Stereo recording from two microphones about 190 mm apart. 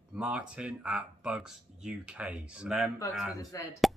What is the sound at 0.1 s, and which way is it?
Speech, 5° right (ahead or behind).